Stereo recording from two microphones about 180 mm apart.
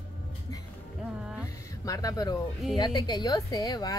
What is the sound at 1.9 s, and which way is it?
Speech, 20° left (ahead or behind).